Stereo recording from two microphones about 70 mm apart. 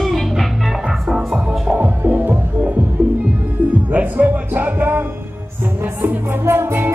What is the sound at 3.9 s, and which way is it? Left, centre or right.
Music, right.